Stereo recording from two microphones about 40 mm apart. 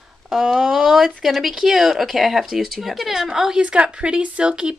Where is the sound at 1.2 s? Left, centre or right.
Centre.